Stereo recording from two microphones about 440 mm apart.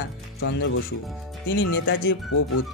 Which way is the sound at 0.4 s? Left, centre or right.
Left.